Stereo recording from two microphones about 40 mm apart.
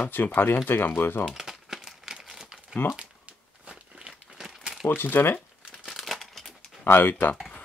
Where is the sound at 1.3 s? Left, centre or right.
Centre.